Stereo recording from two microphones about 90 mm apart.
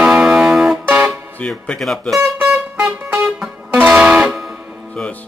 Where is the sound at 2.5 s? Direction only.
10° right (ahead or behind).